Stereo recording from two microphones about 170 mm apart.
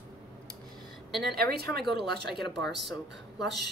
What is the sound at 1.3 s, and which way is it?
Speech, 65° right (ahead or behind).